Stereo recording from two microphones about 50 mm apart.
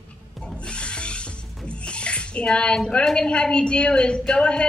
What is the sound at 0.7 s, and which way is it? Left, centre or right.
Music, left.